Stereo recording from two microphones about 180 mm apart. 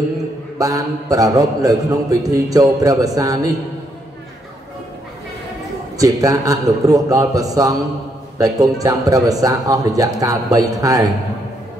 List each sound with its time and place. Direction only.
0.6 s a man's voice: 20° right (ahead or behind)
5.9 s a man's voice: 20° right (ahead or behind)